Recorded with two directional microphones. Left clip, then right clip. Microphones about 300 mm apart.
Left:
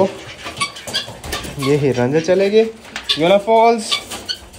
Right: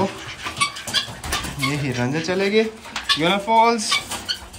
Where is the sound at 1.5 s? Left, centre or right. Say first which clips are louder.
Left 13 dB; centre.